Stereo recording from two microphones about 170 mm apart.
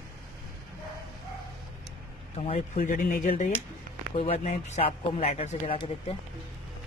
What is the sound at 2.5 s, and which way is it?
Speech, 50° left (ahead or behind).